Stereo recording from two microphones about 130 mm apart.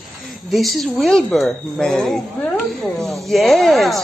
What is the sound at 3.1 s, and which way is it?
Speech, centre (ahead or behind).